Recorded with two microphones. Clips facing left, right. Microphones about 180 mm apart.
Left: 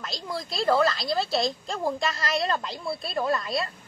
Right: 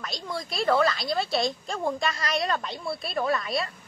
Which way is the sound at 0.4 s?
25° left (ahead or behind).